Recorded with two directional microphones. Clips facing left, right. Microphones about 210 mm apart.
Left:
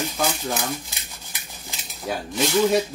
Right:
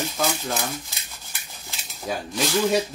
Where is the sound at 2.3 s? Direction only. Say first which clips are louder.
Left 2 dB; 20° left (ahead or behind).